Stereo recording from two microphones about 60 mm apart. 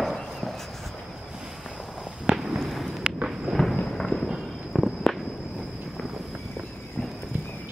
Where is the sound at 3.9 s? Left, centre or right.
Centre.